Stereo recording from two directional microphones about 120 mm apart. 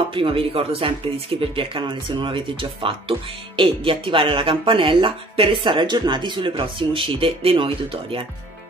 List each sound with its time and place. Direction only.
0.1 s speech: 45° right (ahead or behind)